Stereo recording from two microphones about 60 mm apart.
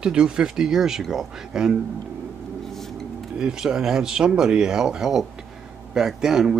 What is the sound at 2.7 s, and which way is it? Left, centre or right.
Vehicle, centre.